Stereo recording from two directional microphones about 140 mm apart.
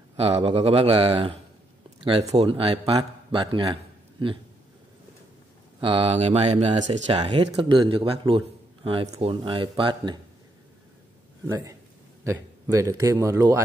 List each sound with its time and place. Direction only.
0.2 s a man's voice: 45° right (ahead or behind)
5.8 s speech: 40° right (ahead or behind)
11.4 s a man's voice: 25° right (ahead or behind)